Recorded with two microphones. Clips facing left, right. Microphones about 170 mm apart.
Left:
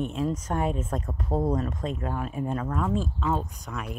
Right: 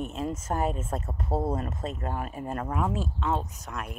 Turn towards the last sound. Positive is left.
turn(degrees=0)  # may be behind; listen again after turning